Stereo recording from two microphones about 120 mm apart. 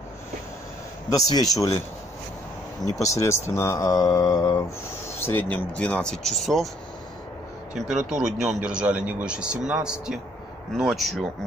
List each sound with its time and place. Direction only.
1.1 s speech: 30° left (ahead or behind)
3.0 s speech: 25° left (ahead or behind)
5.2 s speech: 15° left (ahead or behind)
8.1 s a man's voice: 5° right (ahead or behind)